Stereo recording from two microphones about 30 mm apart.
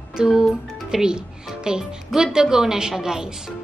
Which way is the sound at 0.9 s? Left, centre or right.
Right.